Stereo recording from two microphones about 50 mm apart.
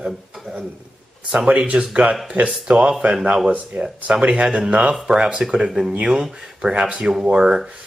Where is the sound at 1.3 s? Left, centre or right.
Centre.